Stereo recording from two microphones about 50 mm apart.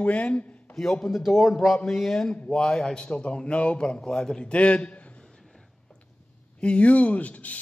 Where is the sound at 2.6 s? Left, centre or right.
Centre.